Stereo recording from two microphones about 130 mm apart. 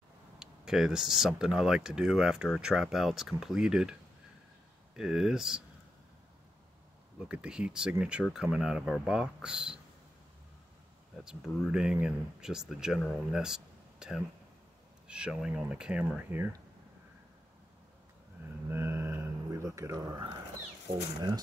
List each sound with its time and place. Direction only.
0.4 s speech: 5° right (ahead or behind)
4.9 s speech: 5° right (ahead or behind)
7.2 s speech: 5° right (ahead or behind)
11.2 s speech: 5° right (ahead or behind)
18.7 s a sound: 20° right (ahead or behind)
20.9 s speech: 35° right (ahead or behind)